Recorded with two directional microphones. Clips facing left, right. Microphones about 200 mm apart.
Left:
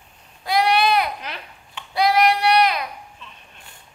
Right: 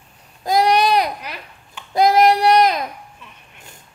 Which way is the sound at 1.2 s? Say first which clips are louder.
Right 1 dB; 10° right (ahead or behind).